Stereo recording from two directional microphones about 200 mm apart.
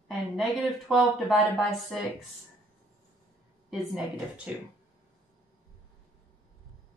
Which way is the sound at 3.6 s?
Centre (ahead or behind).